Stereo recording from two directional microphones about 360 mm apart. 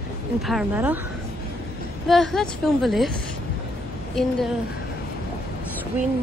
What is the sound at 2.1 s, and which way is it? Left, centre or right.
Speech, centre.